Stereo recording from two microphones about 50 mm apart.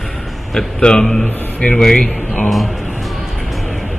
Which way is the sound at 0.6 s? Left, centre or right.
Centre.